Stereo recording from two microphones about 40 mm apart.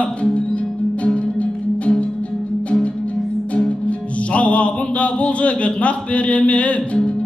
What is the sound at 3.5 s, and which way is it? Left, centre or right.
Music, left.